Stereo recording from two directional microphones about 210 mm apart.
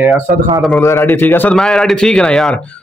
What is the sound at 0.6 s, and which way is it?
A man's voice, centre (ahead or behind).